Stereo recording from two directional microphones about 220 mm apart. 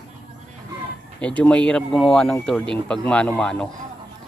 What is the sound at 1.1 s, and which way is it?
Speech, 5° left (ahead or behind).